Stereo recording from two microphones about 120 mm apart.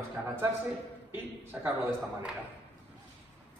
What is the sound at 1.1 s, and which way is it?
A man's voice, 15° right (ahead or behind).